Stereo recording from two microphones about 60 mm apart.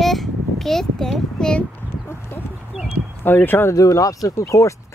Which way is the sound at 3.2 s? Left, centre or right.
Left.